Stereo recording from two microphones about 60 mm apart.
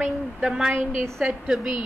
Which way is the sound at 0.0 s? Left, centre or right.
Centre.